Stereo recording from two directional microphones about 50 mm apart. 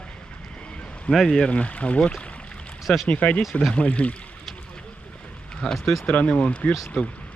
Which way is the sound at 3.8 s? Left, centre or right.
Left.